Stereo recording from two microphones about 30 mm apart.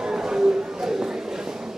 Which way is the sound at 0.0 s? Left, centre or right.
Centre.